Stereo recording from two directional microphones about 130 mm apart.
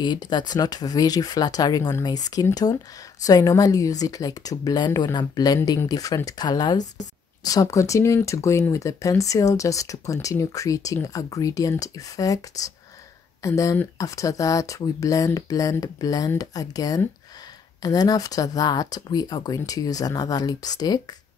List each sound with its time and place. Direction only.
0.0 s speech: 35° left (ahead or behind)